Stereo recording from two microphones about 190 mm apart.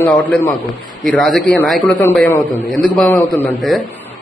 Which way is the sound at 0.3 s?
10° left (ahead or behind).